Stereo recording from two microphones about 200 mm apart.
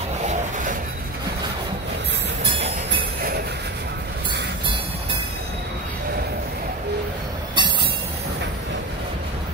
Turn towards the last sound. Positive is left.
turn(degrees=-25)  # may be behind; listen again after turning